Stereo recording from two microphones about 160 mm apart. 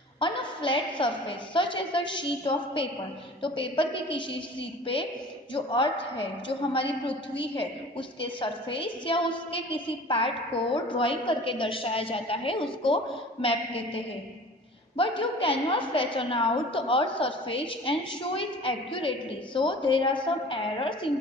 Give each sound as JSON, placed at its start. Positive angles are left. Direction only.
{"t": 0.2, "sound": "a woman's voice", "side_deg": 30}
{"t": 8.2, "sound": "a woman's voice", "side_deg": 35}
{"t": 15.0, "sound": "a woman's voice", "side_deg": 30}